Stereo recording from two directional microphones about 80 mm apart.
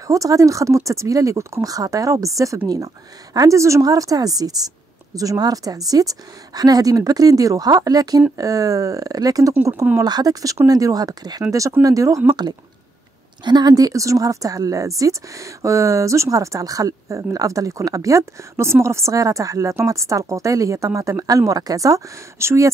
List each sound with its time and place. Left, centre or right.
0.0 s speech: right
12.3 s speech: right